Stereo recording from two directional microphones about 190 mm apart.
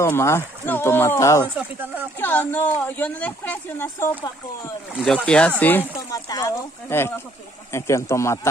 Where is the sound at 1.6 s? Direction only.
10° right (ahead or behind).